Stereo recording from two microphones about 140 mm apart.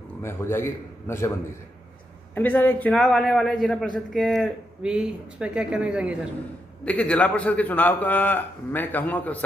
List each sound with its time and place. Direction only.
0.2 s a man's voice: 15° left (ahead or behind)
2.3 s a man's voice: 10° left (ahead or behind); by 6.1 s 10° right (ahead or behind)
6.8 s a man's voice: 10° left (ahead or behind)